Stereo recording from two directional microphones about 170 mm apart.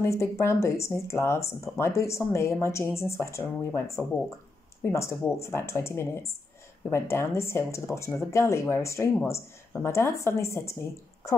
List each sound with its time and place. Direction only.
0.0 s speech: 15° left (ahead or behind)